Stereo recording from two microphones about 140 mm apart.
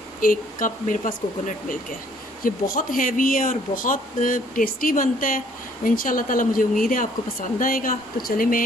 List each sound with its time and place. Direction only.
0.2 s speech: 80° left
2.4 s speech: 85° left